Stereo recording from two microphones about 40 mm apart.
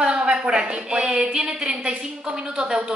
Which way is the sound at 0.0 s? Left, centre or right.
Right.